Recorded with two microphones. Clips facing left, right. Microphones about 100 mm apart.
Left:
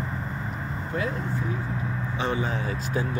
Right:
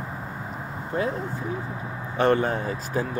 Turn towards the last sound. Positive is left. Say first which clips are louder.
# right 1 dB
turn(degrees=-40)  # may be behind; listen again after turning